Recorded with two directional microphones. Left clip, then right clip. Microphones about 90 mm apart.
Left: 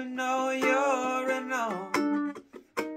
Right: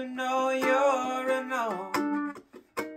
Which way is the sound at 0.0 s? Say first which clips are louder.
Right 1 dB; 15° left (ahead or behind).